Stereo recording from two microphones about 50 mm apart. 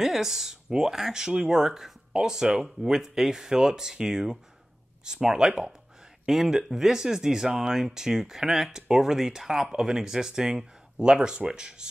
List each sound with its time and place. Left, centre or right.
0.0 s speech: centre